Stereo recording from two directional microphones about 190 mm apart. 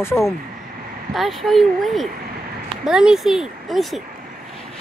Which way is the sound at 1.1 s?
Centre (ahead or behind).